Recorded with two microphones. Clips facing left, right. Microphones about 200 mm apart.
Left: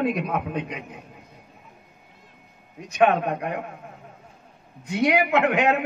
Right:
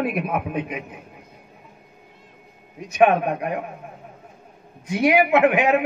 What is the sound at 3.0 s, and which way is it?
Speech, 15° right (ahead or behind).